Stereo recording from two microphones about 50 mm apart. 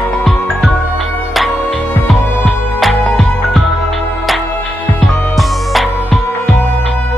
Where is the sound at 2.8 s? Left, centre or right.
Centre.